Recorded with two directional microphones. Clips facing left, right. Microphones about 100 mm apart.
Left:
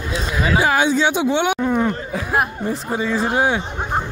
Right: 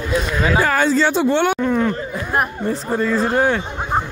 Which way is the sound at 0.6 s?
10° left (ahead or behind).